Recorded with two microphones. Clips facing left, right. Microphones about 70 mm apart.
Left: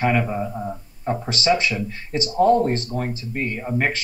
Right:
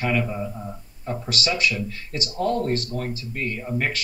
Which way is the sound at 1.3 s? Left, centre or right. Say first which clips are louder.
Left 4 dB; left.